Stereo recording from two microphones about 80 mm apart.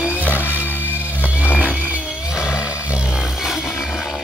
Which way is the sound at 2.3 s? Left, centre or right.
Centre.